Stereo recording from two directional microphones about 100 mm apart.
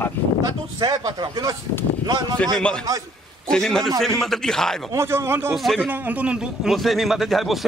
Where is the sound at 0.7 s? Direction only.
40° right (ahead or behind).